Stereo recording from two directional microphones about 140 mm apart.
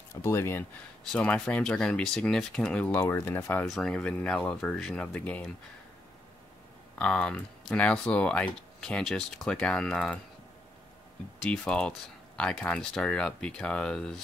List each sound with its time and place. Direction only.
0.1 s speech: 20° left (ahead or behind)
1.1 s speech: 10° left (ahead or behind)
3.6 s speech: centre (ahead or behind)
7.0 s speech: 5° left (ahead or behind)
11.4 s speech: 5° left (ahead or behind)